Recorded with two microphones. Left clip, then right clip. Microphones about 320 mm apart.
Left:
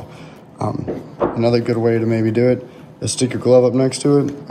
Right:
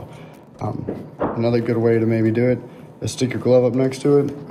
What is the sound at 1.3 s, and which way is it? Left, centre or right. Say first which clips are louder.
Speech: left 2 dB; centre.